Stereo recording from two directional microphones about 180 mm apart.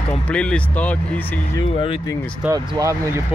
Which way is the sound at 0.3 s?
5° left (ahead or behind).